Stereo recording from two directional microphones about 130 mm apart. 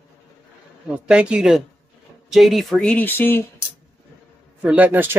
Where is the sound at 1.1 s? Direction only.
10° right (ahead or behind).